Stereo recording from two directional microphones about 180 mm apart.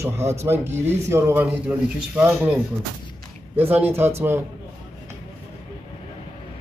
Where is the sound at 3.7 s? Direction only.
10° right (ahead or behind).